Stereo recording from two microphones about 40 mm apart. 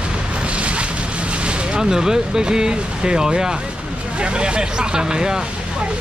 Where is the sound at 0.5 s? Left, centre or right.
Right.